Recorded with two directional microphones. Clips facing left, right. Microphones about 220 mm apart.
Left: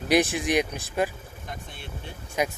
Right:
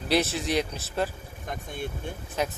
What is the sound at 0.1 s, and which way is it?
Speech, 15° left (ahead or behind).